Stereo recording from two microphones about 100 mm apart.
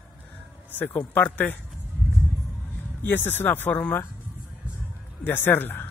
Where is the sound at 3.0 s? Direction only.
20° left (ahead or behind).